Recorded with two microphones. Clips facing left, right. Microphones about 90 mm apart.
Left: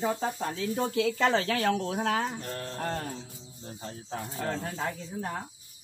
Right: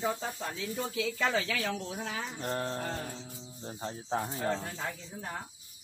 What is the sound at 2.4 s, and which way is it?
Speech, 30° right (ahead or behind).